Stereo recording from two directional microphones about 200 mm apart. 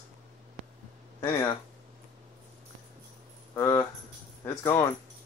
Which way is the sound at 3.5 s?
15° left (ahead or behind).